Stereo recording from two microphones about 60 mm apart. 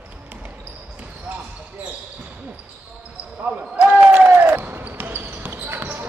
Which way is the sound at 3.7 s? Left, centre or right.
Centre.